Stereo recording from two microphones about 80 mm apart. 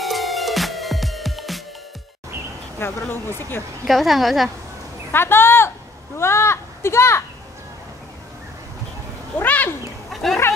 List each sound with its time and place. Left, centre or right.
0.0 s music: centre
2.8 s speech: left
3.8 s a woman's voice: centre
5.1 s speech: left
9.4 s speech: left